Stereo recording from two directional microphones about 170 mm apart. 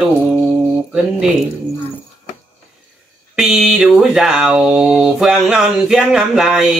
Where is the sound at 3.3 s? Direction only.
Centre (ahead or behind).